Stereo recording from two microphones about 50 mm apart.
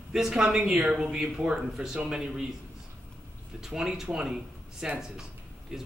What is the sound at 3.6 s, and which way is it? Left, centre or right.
Speech, centre.